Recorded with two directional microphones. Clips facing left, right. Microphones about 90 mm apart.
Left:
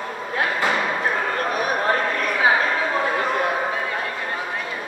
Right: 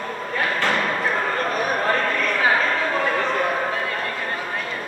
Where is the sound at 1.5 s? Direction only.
5° left (ahead or behind).